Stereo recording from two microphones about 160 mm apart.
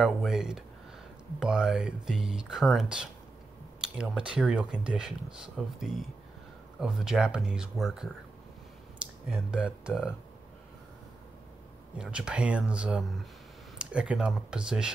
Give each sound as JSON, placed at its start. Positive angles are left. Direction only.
{"t": 0.0, "sound": "speech", "side_deg": 0}
{"t": 9.3, "sound": "speech", "side_deg": -5}
{"t": 12.0, "sound": "speech", "side_deg": -5}